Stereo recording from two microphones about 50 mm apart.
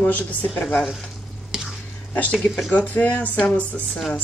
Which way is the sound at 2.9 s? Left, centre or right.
Left.